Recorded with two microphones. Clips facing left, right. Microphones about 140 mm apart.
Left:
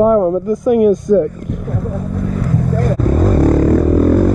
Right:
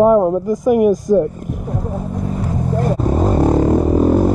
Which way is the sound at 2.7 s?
25° right (ahead or behind).